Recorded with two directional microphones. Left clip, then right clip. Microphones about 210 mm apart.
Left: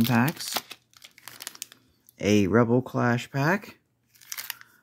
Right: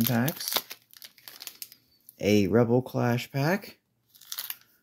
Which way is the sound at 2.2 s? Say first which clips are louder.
Left 1 dB; 15° left (ahead or behind).